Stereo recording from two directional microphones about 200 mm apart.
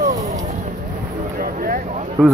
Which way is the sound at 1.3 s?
45° right (ahead or behind).